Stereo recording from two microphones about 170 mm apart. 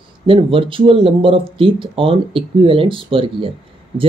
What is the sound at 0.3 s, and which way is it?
Speech, 30° right (ahead or behind).